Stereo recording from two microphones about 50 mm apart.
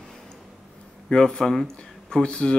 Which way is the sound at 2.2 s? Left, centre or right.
Centre.